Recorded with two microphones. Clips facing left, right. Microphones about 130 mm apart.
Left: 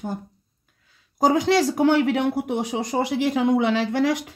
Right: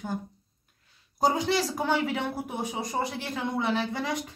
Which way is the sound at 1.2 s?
90° left.